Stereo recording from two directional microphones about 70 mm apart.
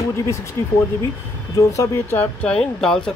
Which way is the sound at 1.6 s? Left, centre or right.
Left.